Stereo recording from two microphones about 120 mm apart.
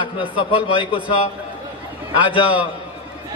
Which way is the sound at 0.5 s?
40° left (ahead or behind).